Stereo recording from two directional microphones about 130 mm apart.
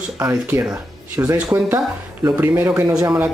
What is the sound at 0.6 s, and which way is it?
Speech, 10° right (ahead or behind).